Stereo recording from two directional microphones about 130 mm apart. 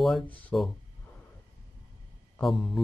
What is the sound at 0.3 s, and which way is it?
Speech, 10° left (ahead or behind).